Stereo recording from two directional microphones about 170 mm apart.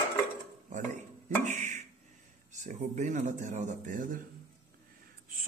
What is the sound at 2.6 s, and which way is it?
Speech, 45° right (ahead or behind).